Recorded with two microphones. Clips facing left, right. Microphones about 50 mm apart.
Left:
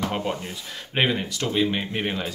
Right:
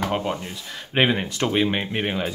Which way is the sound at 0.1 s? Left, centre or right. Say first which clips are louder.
Right 2 dB; centre.